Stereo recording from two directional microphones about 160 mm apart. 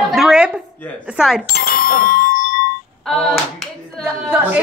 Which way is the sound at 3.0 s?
5° left (ahead or behind).